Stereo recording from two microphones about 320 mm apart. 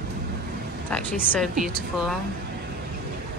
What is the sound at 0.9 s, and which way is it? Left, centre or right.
Speech, centre.